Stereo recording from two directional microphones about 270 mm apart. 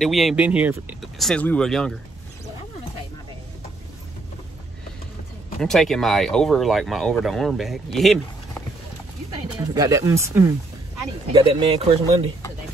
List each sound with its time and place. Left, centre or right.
0.0 s speech: centre
5.6 s speech: centre
9.8 s speech: centre